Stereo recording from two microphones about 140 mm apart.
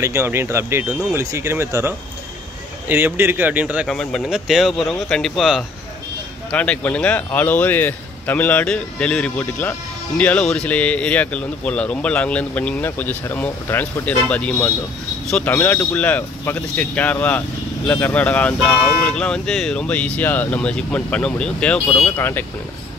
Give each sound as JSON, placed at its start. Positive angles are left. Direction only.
{"t": 0.0, "sound": "speech", "side_deg": -20}
{"t": 3.8, "sound": "a man's voice", "side_deg": 5}
{"t": 22.1, "sound": "a man's voice", "side_deg": 15}